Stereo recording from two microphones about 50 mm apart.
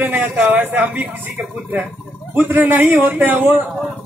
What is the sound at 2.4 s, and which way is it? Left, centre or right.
Speech, right.